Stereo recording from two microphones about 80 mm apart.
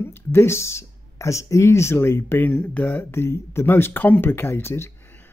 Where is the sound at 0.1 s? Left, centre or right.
Left.